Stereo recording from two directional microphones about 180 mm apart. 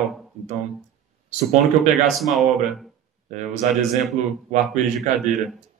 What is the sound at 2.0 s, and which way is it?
Speech, centre (ahead or behind).